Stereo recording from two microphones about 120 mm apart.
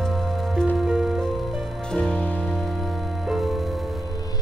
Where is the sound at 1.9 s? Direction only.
10° left (ahead or behind).